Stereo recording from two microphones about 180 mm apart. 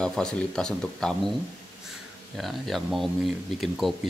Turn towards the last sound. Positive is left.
turn(degrees=0)  # may be behind; listen again after turning